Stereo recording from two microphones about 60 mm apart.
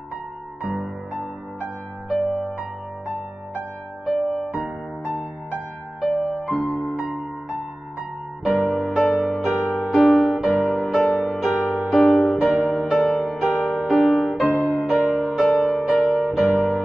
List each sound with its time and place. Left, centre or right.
0.7 s music: centre
2.1 s music: centre
4.1 s music: centre
4.5 s music: right
6.0 s music: centre
6.5 s music: left
8.5 s music: centre